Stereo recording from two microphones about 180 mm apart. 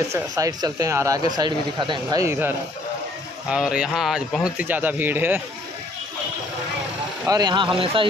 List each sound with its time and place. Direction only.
0.1 s speech: 20° right (ahead or behind)
7.2 s speech: 20° right (ahead or behind)